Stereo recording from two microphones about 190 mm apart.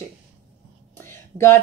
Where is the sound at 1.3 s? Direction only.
15° left (ahead or behind).